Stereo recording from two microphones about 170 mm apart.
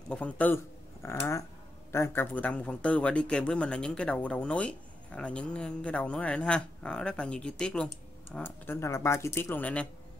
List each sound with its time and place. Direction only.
0.1 s a man's voice: 10° left (ahead or behind)